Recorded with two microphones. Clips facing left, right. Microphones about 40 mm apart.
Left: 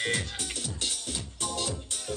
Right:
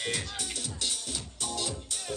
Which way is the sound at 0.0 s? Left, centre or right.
Left.